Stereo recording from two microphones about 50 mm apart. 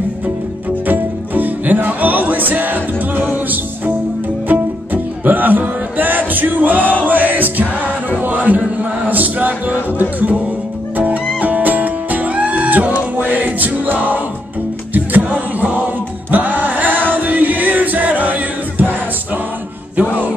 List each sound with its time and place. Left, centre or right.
0.8 s music: right
15.2 s music: right